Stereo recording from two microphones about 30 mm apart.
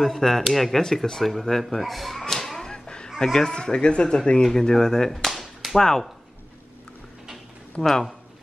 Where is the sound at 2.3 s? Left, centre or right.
Centre.